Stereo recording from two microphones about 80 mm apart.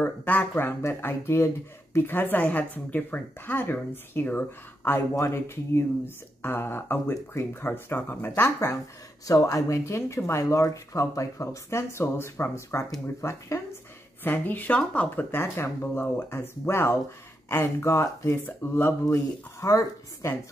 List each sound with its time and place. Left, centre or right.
0.0 s speech: left
14.2 s speech: left